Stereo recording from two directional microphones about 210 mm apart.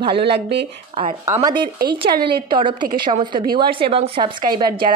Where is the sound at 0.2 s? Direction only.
50° right (ahead or behind).